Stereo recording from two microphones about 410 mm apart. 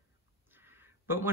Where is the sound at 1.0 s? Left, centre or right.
Centre.